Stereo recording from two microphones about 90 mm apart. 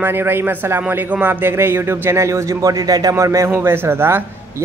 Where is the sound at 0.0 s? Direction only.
25° right (ahead or behind).